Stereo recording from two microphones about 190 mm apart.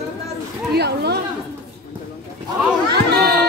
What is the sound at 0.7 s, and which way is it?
Speech, 60° right (ahead or behind).